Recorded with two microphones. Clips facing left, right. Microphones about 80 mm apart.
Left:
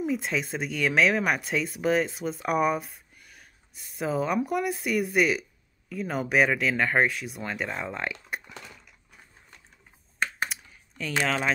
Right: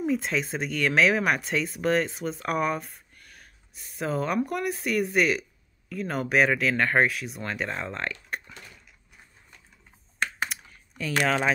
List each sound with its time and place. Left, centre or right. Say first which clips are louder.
0.0 s speech: right 2 dB; centre
10.5 s typing: right 1 dB; centre